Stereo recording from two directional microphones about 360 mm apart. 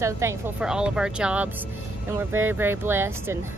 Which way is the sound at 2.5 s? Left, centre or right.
Centre.